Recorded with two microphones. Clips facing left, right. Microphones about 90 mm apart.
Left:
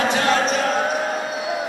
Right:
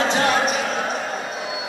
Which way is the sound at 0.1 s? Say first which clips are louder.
Even; 25° right (ahead or behind).